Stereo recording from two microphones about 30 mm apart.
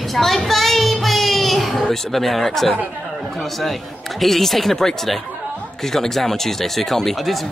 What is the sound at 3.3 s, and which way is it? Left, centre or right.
Speech, centre.